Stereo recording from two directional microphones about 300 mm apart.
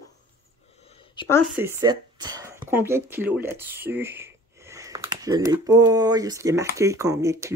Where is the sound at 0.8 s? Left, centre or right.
Centre.